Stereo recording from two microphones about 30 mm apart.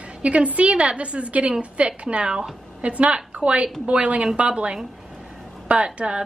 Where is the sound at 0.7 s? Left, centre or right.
Right.